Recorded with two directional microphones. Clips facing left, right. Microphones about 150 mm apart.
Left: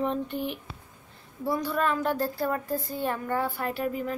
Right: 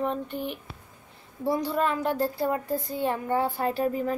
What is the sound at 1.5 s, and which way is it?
Speech, 25° right (ahead or behind).